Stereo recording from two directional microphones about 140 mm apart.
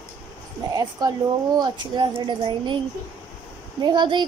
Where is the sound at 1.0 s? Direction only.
30° right (ahead or behind).